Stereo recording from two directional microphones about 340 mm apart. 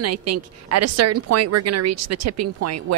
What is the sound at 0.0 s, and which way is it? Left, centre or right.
A woman's voice, right.